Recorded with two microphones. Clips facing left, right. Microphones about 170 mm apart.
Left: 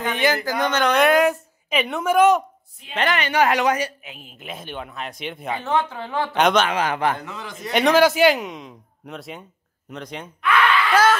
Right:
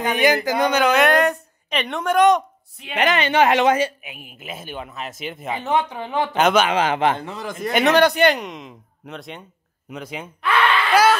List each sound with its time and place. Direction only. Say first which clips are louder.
0.1 s a woman's voice: right 4 dB; 15° right (ahead or behind); by 2.4 s 5° left (ahead or behind)
2.9 s speech: right 2 dB; 15° right (ahead or behind)
3.2 s speech: right 3 dB; 25° right (ahead or behind)
4.0 s a woman's voice: right 1 dB; 10° right (ahead or behind)
5.5 s speech: right 1 dB; 20° right (ahead or behind)
6.3 s a woman's voice: right 1 dB; 5° right (ahead or behind)
6.7 s speech: right 3 dB; 25° right (ahead or behind)
7.3 s a man's voice: right 6 dB; 50° right (ahead or behind)
7.7 s a woman's voice: even; centre (ahead or behind)
10.4 s speech: even; 30° right (ahead or behind)
10.9 s snicker: right 2 dB; 10° right (ahead or behind)